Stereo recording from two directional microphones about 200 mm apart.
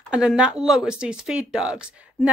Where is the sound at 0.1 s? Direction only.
5° right (ahead or behind).